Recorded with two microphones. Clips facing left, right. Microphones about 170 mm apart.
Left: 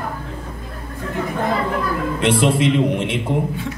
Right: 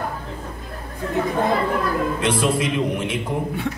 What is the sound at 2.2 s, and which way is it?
A woman's voice, 30° left (ahead or behind).